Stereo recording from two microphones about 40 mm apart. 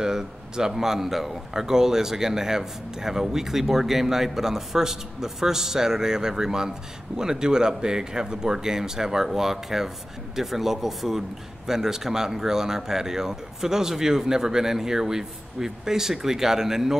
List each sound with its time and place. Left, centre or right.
0.0 s speech: centre